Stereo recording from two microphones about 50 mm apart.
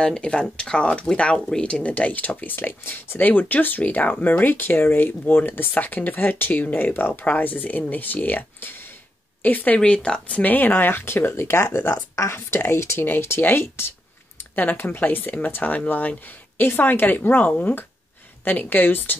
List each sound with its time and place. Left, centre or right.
0.0 s speech: centre; by 9.8 s left
9.8 s speech: centre
10.3 s speech: left
11.4 s speech: left
14.5 s speech: left
17.5 s speech: left
18.4 s speech: left